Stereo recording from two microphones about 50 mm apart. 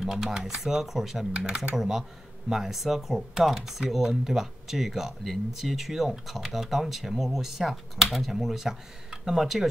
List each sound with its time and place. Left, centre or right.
0.0 s speech: centre
1.3 s speech: right
1.8 s speech: centre